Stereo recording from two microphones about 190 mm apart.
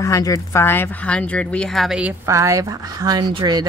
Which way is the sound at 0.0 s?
15° left (ahead or behind).